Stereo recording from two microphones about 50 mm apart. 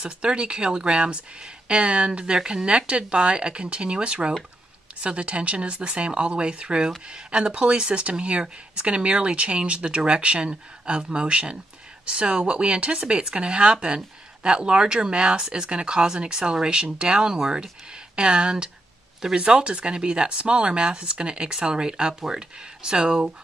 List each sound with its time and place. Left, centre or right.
0.0 s speech: centre